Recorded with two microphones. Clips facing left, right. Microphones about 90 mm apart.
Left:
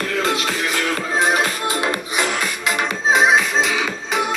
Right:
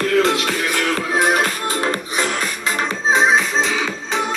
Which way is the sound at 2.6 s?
35° right (ahead or behind).